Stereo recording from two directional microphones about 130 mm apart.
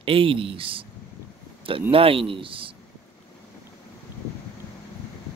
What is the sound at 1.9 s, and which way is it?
Speech, 45° right (ahead or behind).